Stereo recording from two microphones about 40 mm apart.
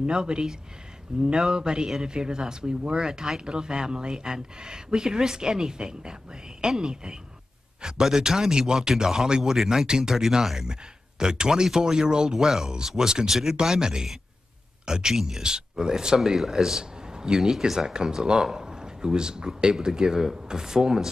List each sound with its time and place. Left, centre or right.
0.0 s speech: right